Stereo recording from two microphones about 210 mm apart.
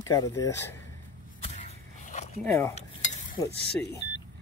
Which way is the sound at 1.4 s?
30° left (ahead or behind).